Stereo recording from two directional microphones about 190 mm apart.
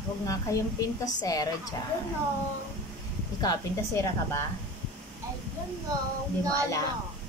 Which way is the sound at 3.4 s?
20° left (ahead or behind).